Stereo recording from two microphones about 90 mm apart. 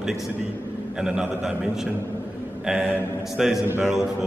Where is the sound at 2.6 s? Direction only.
5° right (ahead or behind).